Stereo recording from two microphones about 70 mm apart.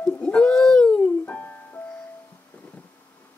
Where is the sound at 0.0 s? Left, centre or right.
Centre.